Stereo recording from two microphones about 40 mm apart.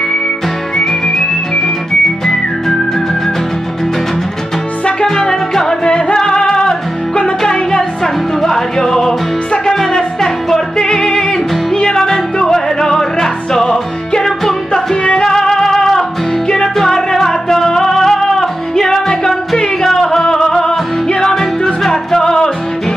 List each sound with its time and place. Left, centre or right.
0.7 s music: centre
5.0 s music: centre